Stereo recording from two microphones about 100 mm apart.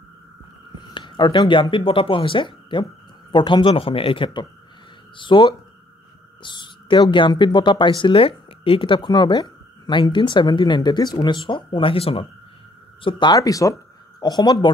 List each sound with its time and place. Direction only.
0.7 s speech: 55° left (ahead or behind)
8.0 s speech: 65° left (ahead or behind)
13.0 s speech: 50° left (ahead or behind)
13.4 s speech: 35° left (ahead or behind)